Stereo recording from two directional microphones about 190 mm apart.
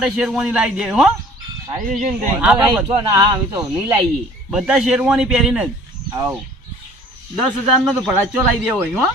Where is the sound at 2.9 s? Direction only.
25° right (ahead or behind).